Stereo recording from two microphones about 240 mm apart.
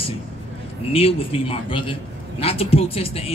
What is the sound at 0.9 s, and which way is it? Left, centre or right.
Speech, left.